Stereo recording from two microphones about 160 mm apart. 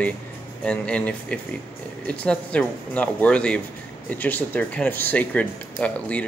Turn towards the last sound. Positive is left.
turn(degrees=10)  # may be behind; listen again after turning